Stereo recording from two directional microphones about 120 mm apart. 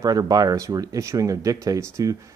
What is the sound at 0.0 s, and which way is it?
Speech, 30° right (ahead or behind).